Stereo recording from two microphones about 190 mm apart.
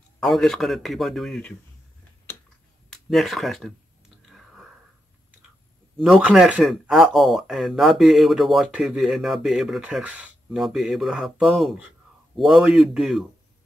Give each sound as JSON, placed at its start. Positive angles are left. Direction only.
{"t": 0.2, "sound": "speech", "side_deg": 0}
{"t": 2.9, "sound": "speech", "side_deg": 0}
{"t": 4.3, "sound": "whispering", "side_deg": 0}
{"t": 5.9, "sound": "speech", "side_deg": 0}